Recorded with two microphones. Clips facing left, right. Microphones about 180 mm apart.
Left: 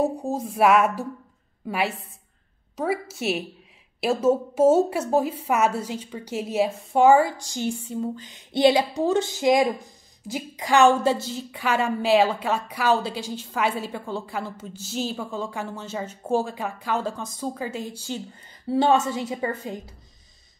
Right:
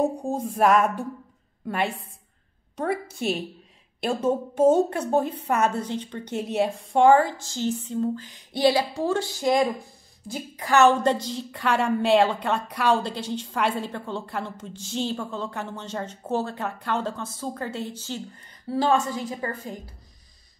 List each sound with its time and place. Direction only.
0.3 s a woman's voice: 5° left (ahead or behind)
18.7 s a woman's voice: 25° left (ahead or behind)